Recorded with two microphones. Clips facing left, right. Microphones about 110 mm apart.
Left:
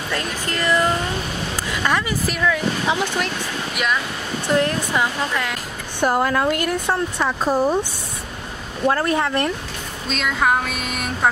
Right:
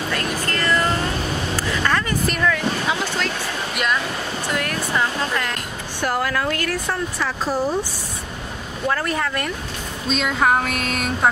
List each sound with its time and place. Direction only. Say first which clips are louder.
0.5 s music: left 3 dB; 15° left (ahead or behind)
1.6 s a sound: left 1 dB; 15° left (ahead or behind)
2.2 s music: right 1 dB; 5° left (ahead or behind)
2.5 s a woman's voice: left 1 dB; 20° left (ahead or behind)
3.7 s music: even; 5° left (ahead or behind)
4.6 s a woman's voice: left 3 dB; 20° left (ahead or behind)
8.8 s a woman's voice: left 4 dB; 25° left (ahead or behind)
10.1 s music: right 1 dB; centre (ahead or behind)